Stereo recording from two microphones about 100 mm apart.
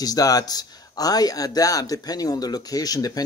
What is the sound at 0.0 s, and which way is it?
A man's voice, 40° left (ahead or behind).